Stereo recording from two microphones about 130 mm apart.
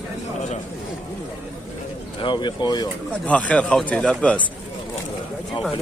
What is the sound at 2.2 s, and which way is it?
Speech, 35° left (ahead or behind).